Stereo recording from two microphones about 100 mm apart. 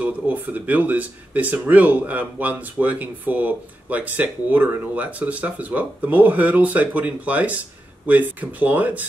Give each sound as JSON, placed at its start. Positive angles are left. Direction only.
{"t": 0.0, "sound": "speech", "side_deg": -15}